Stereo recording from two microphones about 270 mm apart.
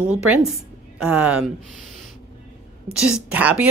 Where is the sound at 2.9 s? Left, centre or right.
Centre.